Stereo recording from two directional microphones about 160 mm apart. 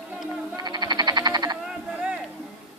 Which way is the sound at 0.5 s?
25° right (ahead or behind).